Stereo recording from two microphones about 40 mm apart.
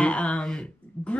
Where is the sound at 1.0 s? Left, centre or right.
Left.